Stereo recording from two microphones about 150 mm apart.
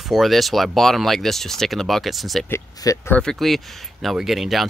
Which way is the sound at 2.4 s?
20° left (ahead or behind).